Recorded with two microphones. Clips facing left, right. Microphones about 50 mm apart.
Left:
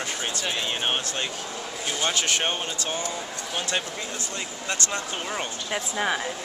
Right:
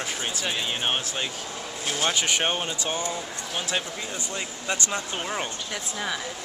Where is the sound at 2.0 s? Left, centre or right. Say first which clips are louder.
Right 1 dB; centre.